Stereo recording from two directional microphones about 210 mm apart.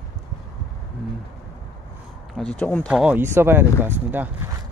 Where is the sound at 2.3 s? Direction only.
5° left (ahead or behind).